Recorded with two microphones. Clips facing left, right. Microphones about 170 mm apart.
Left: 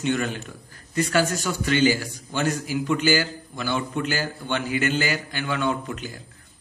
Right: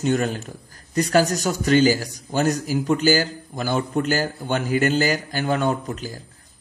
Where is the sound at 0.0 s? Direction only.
40° right (ahead or behind).